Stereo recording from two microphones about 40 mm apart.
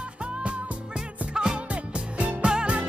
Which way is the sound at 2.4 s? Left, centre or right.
Right.